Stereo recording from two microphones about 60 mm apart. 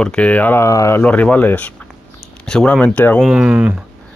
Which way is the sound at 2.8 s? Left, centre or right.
Left.